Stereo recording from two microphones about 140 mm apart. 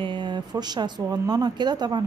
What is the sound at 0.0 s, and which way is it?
Speech, 35° right (ahead or behind).